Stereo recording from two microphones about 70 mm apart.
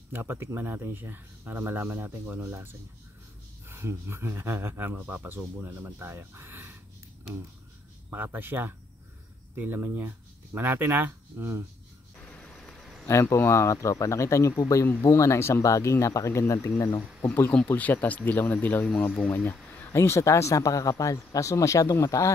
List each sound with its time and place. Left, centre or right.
0.1 s speech: right
8.1 s speech: right
12.3 s a sound: centre
13.1 s speech: left
17.6 s speech: left
18.9 s speech: centre
19.9 s speech: left